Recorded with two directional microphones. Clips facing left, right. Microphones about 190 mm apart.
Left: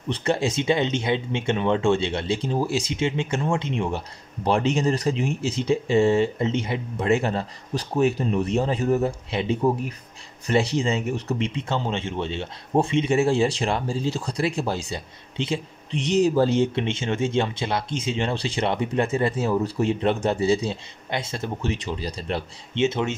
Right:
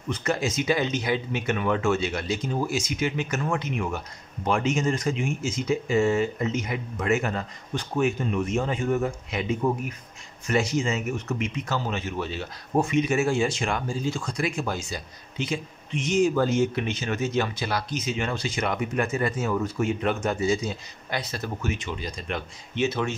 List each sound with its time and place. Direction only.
0.1 s speech: 30° left (ahead or behind)